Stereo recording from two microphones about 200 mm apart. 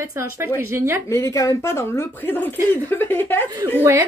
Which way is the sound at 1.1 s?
15° left (ahead or behind).